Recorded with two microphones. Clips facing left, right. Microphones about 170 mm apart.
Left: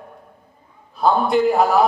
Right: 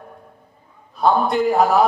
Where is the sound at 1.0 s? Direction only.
Centre (ahead or behind).